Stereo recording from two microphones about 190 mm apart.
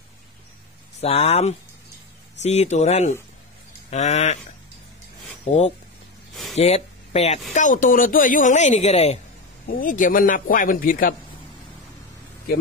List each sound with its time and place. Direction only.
1.0 s speech: 30° left (ahead or behind)
6.5 s speech: 35° left (ahead or behind)
9.7 s a man's voice: 45° left (ahead or behind)